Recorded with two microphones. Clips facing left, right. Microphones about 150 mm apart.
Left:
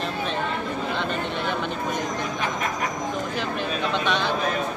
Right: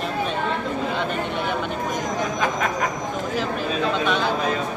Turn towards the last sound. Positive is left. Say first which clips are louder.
# right 2 dB
turn(degrees=-5)  # may be behind; listen again after turning